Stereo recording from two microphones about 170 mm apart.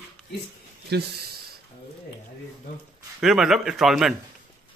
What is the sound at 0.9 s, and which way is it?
Speech, 75° right (ahead or behind).